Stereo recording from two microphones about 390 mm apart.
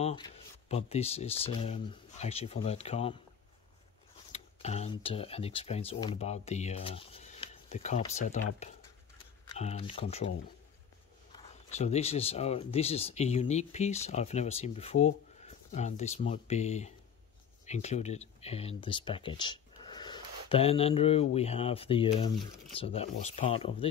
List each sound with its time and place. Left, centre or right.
0.0 s speech: centre
4.3 s speech: centre
9.6 s speech: centre
11.3 s speech: centre